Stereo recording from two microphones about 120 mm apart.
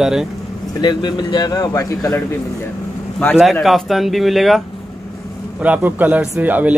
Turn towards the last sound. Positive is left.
turn(degrees=-15)  # may be behind; listen again after turning